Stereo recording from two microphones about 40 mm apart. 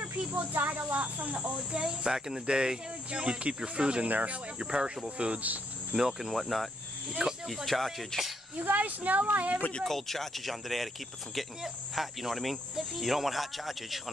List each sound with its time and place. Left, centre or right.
0.3 s speech: right
1.8 s speech: centre
4.1 s speech: right
4.6 s speech: right
5.9 s cricket: centre
7.1 s speech: centre
7.4 s cricket: centre
8.5 s speech: right
9.8 s cricket: centre